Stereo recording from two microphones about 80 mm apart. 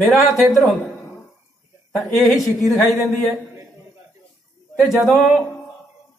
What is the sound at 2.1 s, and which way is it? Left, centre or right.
Speech, centre.